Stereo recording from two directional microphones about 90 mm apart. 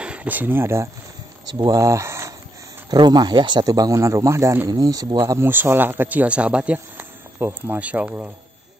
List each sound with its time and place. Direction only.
0.0 s speech: 15° right (ahead or behind)
1.6 s speech: 40° right (ahead or behind)
2.9 s speech: 50° right (ahead or behind)
5.1 s speech: 30° right (ahead or behind)